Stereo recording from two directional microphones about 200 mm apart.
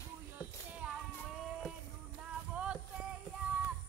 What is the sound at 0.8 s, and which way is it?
Child singing, 5° right (ahead or behind).